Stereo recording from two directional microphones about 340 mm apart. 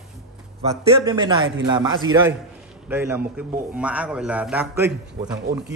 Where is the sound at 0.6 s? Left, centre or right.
Centre.